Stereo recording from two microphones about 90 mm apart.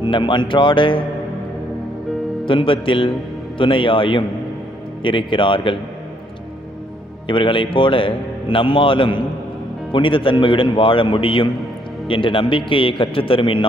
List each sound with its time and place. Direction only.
0.0 s speech: 65° left (ahead or behind)
2.4 s a man's voice: 70° left (ahead or behind)
7.2 s a man's voice: 70° left (ahead or behind)